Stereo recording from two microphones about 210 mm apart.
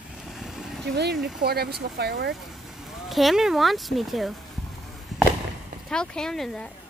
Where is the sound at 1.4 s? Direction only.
50° right (ahead or behind).